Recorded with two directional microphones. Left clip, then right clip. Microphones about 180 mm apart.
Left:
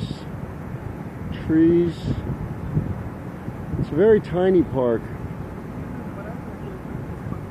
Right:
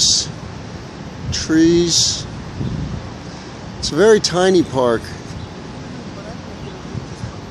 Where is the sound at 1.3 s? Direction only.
25° right (ahead or behind).